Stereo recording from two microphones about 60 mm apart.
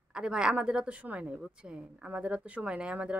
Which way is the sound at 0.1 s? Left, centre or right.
Centre.